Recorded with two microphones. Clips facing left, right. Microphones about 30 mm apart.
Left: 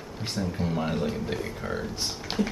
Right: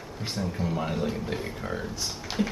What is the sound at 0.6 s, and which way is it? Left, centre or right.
Speech, centre.